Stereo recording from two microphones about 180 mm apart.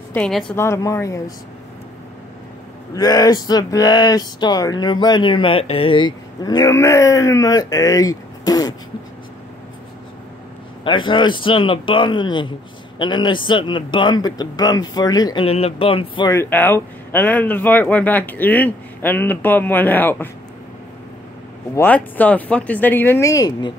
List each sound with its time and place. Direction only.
0.1 s a woman's voice: 5° left (ahead or behind)
0.6 s speech: 15° left (ahead or behind)
2.9 s speech: 20° left (ahead or behind)
10.8 s speech: 25° left (ahead or behind)
15.4 s speech: 35° left (ahead or behind)
16.3 s speech: 10° left (ahead or behind)
21.7 s speech: 10° left (ahead or behind)